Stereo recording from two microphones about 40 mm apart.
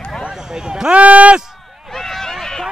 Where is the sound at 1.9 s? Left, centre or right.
Centre.